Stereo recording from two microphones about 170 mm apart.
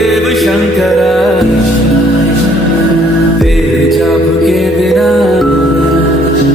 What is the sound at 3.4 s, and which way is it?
Music, centre (ahead or behind).